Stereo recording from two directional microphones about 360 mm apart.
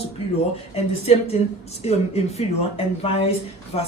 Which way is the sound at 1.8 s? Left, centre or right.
Centre.